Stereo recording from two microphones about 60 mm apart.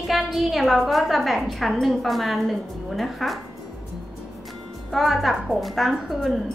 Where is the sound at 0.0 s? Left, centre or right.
Centre.